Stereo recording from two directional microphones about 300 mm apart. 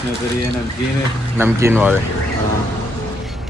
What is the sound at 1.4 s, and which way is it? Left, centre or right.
Speech, centre.